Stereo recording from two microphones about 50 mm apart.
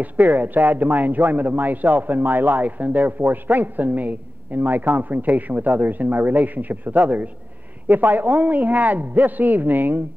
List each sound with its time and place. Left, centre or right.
0.0 s a man's voice: right